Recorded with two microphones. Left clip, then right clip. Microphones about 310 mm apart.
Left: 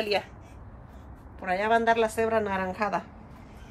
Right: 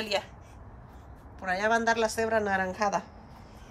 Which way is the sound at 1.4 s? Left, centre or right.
Centre.